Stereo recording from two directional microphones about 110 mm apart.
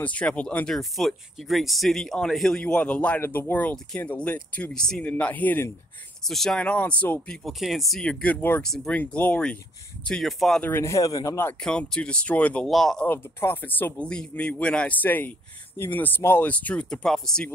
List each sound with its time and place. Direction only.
0.0 s speech: 10° left (ahead or behind)
0.7 s speech: centre (ahead or behind)
6.2 s speech: 5° left (ahead or behind)
7.4 s speech: centre (ahead or behind); by 8.6 s 15° left (ahead or behind)
8.6 s speech: 5° left (ahead or behind)
10.6 s speech: 20° left (ahead or behind)
11.6 s speech: 5° left (ahead or behind)
13.0 s speech: 20° left (ahead or behind)